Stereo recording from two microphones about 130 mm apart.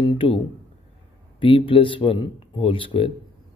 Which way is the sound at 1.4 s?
40° left (ahead or behind).